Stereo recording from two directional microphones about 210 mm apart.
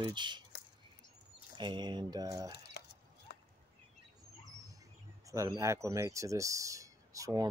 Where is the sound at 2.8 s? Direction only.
50° left (ahead or behind).